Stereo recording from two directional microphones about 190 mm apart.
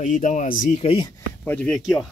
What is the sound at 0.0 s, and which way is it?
Speech, 40° left (ahead or behind).